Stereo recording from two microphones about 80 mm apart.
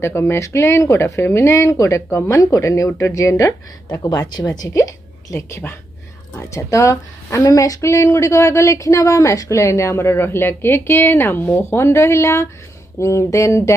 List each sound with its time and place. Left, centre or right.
0.0 s speech: left
4.1 s speech: left